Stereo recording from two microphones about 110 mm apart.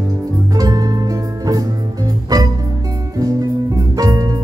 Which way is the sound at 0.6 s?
35° right (ahead or behind).